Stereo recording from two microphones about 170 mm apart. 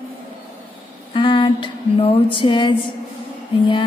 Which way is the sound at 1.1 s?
30° left (ahead or behind).